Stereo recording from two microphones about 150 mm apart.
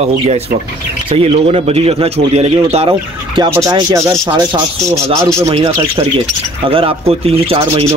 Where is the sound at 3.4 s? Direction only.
25° right (ahead or behind).